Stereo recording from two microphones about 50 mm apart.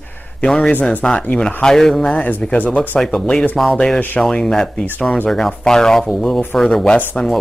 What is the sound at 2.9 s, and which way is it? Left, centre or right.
Speech, centre.